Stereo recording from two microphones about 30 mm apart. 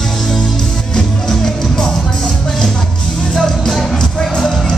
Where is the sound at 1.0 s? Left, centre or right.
Centre.